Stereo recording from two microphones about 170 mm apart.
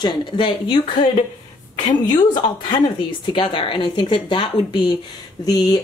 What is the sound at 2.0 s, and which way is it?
A woman's voice, 25° left (ahead or behind).